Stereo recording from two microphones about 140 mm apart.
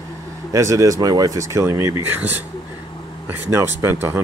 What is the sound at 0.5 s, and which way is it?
Speech, 25° right (ahead or behind).